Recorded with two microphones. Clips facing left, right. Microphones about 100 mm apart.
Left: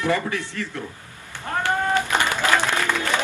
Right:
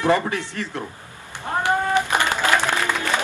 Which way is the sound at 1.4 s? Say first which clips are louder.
Right 2 dB; 20° right (ahead or behind).